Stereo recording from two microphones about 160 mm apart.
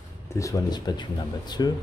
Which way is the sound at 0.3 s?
20° left (ahead or behind).